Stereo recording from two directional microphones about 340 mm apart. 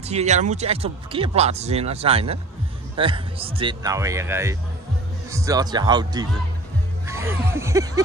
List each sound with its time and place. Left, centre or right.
0.0 s speech: centre